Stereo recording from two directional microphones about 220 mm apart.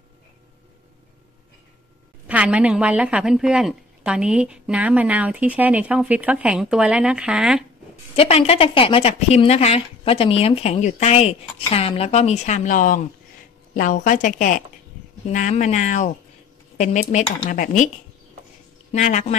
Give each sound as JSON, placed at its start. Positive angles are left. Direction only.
{"t": 2.2, "sound": "a woman's voice", "side_deg": -5}
{"t": 8.2, "sound": "a woman's voice", "side_deg": 25}
{"t": 18.9, "sound": "speech", "side_deg": 30}